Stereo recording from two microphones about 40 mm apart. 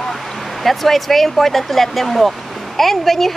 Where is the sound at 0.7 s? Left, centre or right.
Centre.